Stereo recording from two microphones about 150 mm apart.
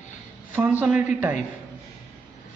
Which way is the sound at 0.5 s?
10° right (ahead or behind).